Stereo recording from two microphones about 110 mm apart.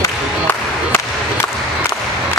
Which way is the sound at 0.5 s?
20° left (ahead or behind).